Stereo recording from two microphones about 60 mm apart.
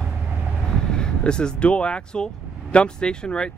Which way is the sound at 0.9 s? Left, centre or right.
Centre.